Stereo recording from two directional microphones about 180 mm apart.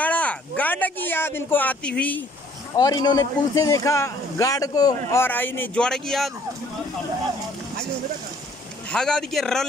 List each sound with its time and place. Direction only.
0.0 s a sound: 10° left (ahead or behind)
2.7 s speech: 20° left (ahead or behind); by 6.3 s centre (ahead or behind)
8.9 s speech: 5° left (ahead or behind)